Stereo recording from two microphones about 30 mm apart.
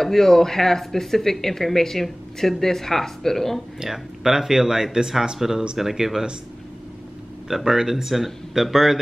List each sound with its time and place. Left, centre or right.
0.0 s speech: centre
3.9 s speech: centre
7.4 s speech: centre